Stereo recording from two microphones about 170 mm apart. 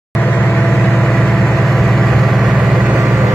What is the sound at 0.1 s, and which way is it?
Vehicle, 5° left (ahead or behind).